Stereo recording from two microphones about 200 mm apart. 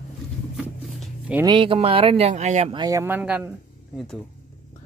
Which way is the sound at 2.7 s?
15° right (ahead or behind).